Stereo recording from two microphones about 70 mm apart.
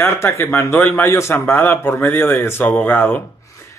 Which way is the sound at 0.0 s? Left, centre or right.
Left.